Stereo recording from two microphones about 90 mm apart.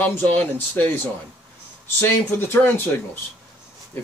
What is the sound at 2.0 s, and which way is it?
Speech, 25° left (ahead or behind).